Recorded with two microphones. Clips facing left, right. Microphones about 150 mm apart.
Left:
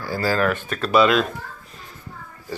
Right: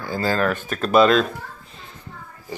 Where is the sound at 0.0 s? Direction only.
20° right (ahead or behind).